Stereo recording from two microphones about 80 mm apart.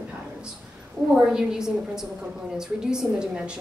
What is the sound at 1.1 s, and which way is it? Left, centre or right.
A woman's voice, centre.